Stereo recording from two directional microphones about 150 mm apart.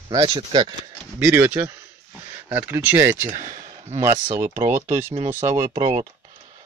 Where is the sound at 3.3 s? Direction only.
55° right (ahead or behind).